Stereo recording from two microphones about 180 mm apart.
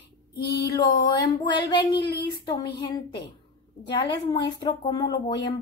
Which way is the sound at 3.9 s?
25° left (ahead or behind).